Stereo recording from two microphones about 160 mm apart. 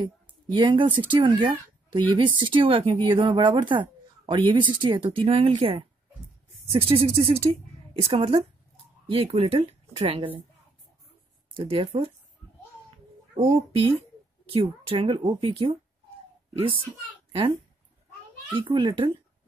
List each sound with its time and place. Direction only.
0.0 s speech: 30° right (ahead or behind)
11.5 s speech: 35° right (ahead or behind)
13.5 s speech: 35° right (ahead or behind)
18.5 s speech: 30° right (ahead or behind)